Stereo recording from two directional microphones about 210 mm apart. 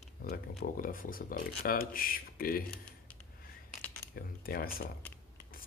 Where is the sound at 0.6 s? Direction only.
40° left (ahead or behind).